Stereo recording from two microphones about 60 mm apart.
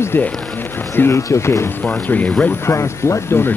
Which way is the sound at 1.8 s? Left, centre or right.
Left.